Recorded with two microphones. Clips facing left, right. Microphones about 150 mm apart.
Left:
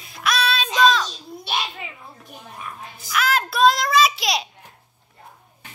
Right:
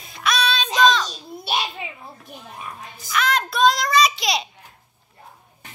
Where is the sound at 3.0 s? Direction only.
5° left (ahead or behind).